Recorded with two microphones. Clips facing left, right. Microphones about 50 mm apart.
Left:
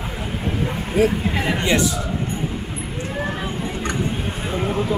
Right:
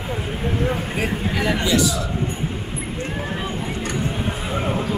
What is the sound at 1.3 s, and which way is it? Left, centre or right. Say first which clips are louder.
Speech: even; left.